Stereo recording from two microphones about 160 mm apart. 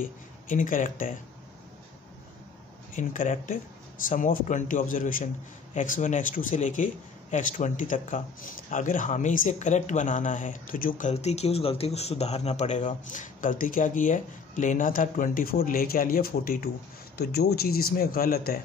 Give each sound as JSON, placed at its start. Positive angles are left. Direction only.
{"t": 0.0, "sound": "speech", "side_deg": 55}
{"t": 2.9, "sound": "speech", "side_deg": 55}
{"t": 17.2, "sound": "speech", "side_deg": 85}